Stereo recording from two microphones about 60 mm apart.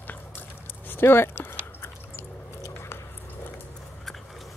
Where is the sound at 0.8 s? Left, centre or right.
Left.